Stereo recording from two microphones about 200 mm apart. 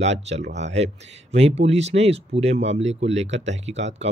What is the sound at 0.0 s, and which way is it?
Speech, 35° right (ahead or behind).